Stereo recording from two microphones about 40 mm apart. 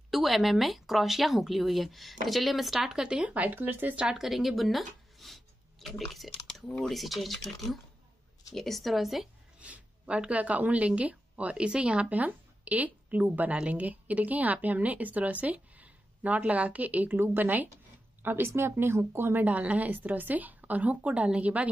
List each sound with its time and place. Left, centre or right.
0.1 s speech: centre
3.0 s a woman's voice: right
3.4 s speech: right
3.9 s a woman's voice: right
4.2 s speech: centre
6.7 s speech: centre
9.6 s a woman's voice: right
12.1 s a woman's voice: right
18.2 s speech: right
19.4 s a woman's voice: right